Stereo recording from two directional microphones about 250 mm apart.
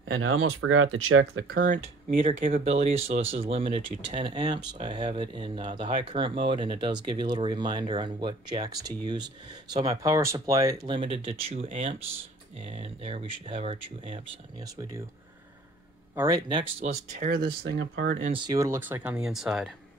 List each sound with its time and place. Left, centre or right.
0.1 s speech: right
1.5 s speech: right
16.2 s speech: centre
16.9 s speech: right
18.3 s speech: centre